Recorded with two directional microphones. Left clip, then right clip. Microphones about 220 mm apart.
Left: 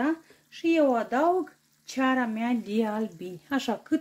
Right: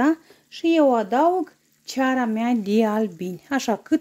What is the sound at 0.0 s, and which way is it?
Speech, 40° right (ahead or behind).